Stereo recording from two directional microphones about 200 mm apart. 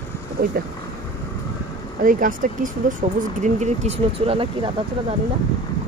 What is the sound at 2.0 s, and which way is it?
Speech, 40° right (ahead or behind).